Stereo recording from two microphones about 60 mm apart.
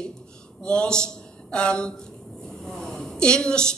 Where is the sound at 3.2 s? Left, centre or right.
Centre.